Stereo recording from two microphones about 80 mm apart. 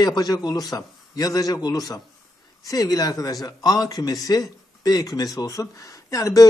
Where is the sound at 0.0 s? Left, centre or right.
Left.